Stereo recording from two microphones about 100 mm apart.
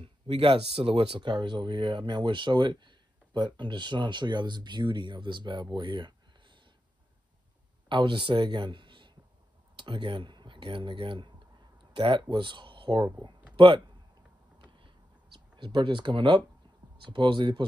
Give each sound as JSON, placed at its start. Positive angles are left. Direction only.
{"t": 0.0, "sound": "speech", "side_deg": -70}
{"t": 7.9, "sound": "a man's voice", "side_deg": -55}
{"t": 14.6, "sound": "a sound", "side_deg": -55}
{"t": 17.0, "sound": "speech", "side_deg": -55}